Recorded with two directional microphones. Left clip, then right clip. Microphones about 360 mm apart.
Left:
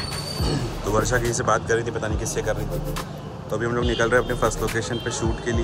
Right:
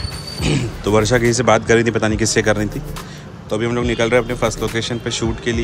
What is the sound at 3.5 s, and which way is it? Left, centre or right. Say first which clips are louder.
Speech: right 5 dB; centre.